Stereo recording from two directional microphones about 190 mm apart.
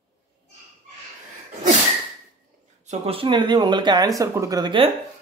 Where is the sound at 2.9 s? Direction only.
30° right (ahead or behind).